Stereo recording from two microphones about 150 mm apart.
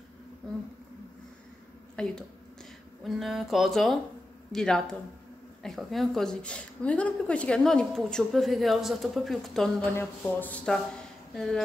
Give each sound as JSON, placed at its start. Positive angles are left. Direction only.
{"t": 2.0, "sound": "a woman's voice", "side_deg": 5}